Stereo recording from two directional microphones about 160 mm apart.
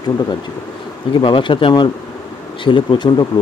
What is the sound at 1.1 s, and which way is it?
Speech, 30° left (ahead or behind).